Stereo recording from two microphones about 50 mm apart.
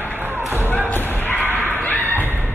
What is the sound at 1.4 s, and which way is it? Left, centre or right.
Bow-wow, left.